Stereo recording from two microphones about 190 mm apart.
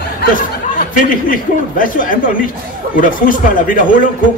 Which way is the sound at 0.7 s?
45° left (ahead or behind).